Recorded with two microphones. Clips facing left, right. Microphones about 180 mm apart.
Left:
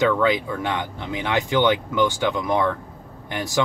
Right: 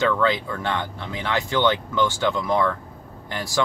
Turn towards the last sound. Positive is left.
turn(degrees=20)  # may be behind; listen again after turning